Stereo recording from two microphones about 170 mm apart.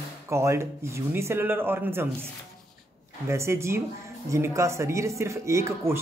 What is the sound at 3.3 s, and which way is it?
Speech, 15° right (ahead or behind).